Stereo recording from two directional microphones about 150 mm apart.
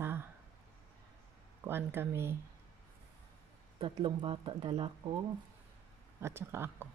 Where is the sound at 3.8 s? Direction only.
35° right (ahead or behind).